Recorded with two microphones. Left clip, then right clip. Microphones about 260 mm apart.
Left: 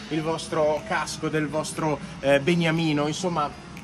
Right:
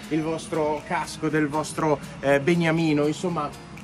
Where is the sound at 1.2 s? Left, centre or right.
Centre.